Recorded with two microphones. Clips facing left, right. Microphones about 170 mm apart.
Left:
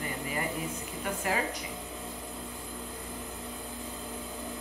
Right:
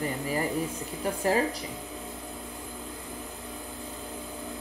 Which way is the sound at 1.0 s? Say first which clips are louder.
Right 6 dB; 35° right (ahead or behind).